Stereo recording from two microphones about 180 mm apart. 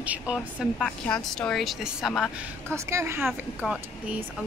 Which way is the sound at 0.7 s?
5° left (ahead or behind).